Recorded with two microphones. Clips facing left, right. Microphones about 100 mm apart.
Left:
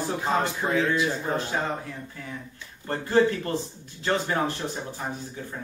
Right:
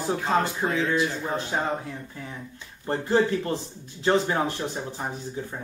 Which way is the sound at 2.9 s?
25° right (ahead or behind).